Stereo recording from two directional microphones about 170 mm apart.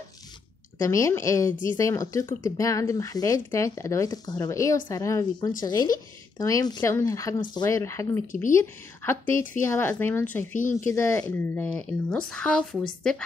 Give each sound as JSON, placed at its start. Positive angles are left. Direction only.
{"t": 0.7, "sound": "speech", "side_deg": 15}